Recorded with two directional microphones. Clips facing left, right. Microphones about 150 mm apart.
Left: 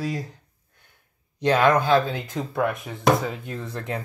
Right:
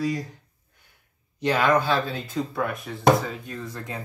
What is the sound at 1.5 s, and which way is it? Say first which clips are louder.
Speech: left 3 dB; 20° left (ahead or behind).